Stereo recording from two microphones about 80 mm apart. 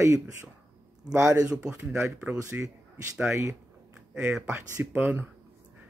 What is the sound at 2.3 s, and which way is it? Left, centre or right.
Speech, right.